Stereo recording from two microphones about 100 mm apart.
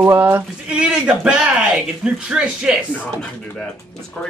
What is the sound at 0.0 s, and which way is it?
Speech, 20° right (ahead or behind).